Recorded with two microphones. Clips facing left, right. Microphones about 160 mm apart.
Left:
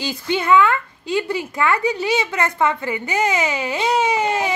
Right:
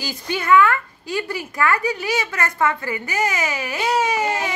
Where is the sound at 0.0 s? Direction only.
25° left (ahead or behind).